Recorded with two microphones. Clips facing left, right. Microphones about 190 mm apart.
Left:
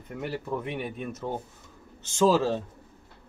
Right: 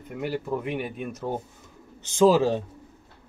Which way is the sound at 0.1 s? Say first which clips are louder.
Right 3 dB; 5° right (ahead or behind).